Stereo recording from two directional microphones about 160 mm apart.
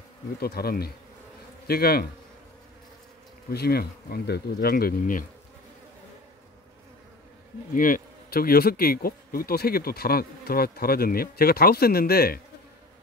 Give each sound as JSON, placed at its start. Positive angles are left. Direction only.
{"t": 0.4, "sound": "speech", "side_deg": 75}
{"t": 3.4, "sound": "speech", "side_deg": 75}
{"t": 7.7, "sound": "speech", "side_deg": 60}